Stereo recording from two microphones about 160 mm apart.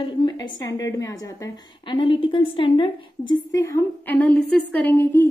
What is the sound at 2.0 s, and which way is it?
A woman's voice, 35° left (ahead or behind).